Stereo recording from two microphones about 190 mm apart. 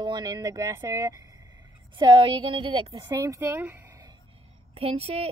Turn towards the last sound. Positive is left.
turn(degrees=-30)  # may be behind; listen again after turning